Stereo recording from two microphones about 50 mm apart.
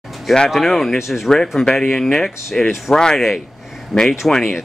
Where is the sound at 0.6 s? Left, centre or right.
Centre.